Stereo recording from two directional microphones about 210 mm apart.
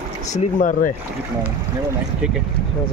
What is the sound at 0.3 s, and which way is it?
Speech, 40° left (ahead or behind).